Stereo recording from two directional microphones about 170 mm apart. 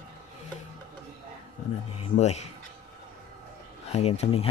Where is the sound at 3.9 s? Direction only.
40° left (ahead or behind).